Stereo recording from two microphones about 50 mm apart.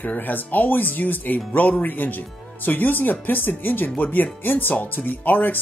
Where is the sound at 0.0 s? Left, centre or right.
Left.